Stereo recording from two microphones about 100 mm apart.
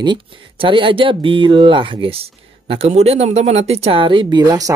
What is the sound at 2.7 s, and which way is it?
Speech, 80° right.